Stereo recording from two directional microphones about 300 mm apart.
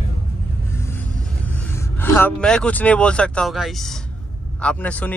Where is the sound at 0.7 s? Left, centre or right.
Centre.